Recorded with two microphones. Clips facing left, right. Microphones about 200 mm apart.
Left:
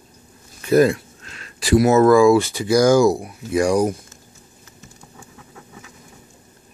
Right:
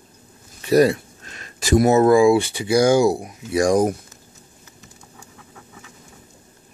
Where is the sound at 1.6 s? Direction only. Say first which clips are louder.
Left 1 dB; 45° right (ahead or behind).